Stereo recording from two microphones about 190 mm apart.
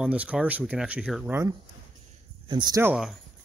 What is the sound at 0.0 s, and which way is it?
Speech, 5° right (ahead or behind).